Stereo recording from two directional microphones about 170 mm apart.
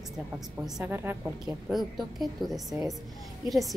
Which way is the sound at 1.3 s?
Centre (ahead or behind).